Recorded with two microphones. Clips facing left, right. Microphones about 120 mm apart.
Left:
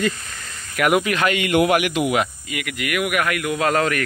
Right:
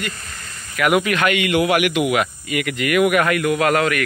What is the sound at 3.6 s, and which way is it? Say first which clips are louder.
Speech: right 2 dB; 30° left (ahead or behind).